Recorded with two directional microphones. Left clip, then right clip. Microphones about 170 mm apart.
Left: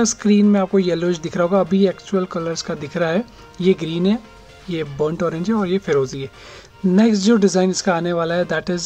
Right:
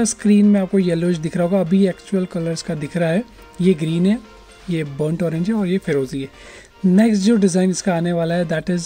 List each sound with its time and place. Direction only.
0.2 s speech: 40° right (ahead or behind)